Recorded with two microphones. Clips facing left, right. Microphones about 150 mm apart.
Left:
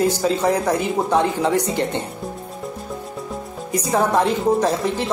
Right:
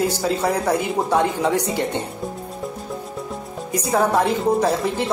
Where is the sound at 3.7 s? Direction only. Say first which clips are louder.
Left 1 dB; 10° right (ahead or behind).